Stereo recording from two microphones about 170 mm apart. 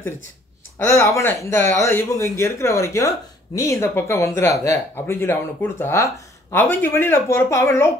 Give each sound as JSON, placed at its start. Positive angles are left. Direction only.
{"t": 0.7, "sound": "speech", "side_deg": 15}